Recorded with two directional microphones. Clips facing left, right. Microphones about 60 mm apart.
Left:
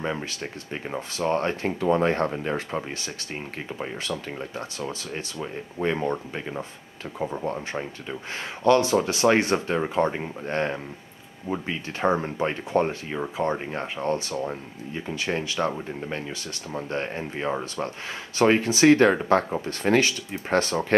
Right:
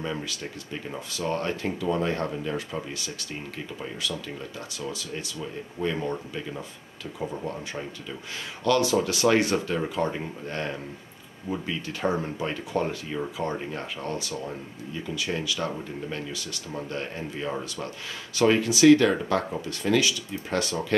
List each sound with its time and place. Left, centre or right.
0.0 s speech: left